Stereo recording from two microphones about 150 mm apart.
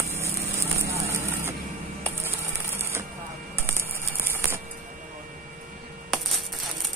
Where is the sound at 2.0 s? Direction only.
15° right (ahead or behind).